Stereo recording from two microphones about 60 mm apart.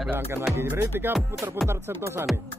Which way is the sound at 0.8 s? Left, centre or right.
Right.